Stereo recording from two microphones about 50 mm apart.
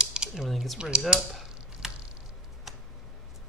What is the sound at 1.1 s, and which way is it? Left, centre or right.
Chop, centre.